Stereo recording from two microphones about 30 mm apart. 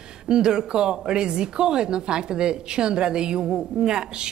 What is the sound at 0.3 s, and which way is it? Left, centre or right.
Speech, right.